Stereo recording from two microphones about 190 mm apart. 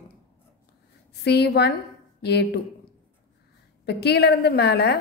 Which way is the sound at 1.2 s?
60° left (ahead or behind).